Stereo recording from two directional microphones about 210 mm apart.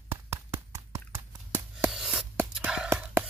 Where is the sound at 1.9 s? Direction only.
Centre (ahead or behind).